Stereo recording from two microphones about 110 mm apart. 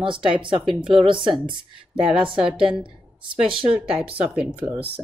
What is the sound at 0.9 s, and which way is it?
Speech, 50° right (ahead or behind).